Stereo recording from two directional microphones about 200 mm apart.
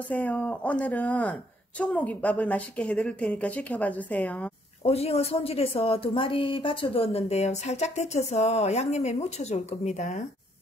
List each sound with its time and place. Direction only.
0.1 s a woman's voice: 5° left (ahead or behind)
4.8 s a woman's voice: 30° left (ahead or behind)